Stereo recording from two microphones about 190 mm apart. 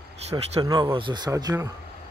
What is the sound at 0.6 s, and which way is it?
Speech, 20° right (ahead or behind).